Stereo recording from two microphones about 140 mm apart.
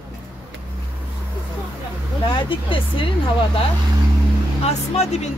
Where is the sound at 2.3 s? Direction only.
40° left (ahead or behind).